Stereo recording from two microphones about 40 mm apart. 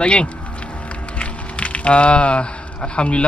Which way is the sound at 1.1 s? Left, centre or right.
Left.